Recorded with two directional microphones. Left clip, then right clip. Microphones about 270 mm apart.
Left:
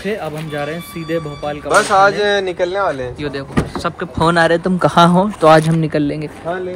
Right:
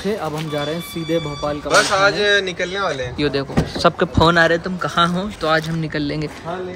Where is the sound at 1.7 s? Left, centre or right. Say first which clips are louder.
Left 4 dB; centre.